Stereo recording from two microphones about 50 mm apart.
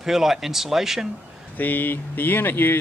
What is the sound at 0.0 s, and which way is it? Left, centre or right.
Speech, centre.